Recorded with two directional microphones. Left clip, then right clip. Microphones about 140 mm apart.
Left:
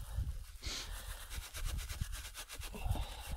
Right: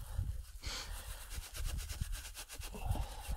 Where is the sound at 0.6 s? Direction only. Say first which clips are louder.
Left 1 dB; 5° right (ahead or behind).